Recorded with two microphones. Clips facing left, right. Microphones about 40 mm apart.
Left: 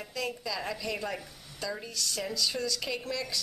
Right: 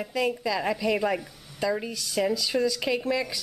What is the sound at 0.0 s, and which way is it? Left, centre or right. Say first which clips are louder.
A woman's voice: right 8 dB; centre.